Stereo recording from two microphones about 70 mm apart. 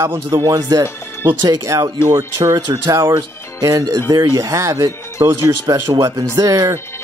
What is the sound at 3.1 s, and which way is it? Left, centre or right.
Speech, right.